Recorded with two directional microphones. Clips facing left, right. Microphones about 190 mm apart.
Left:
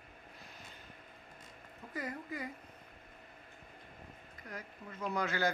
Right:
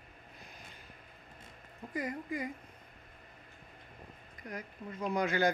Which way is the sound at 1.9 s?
15° right (ahead or behind).